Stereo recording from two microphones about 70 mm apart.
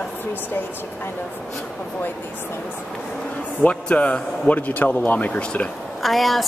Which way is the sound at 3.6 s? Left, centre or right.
Centre.